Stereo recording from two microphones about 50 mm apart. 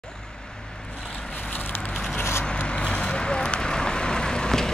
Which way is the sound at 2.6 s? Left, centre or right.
Left.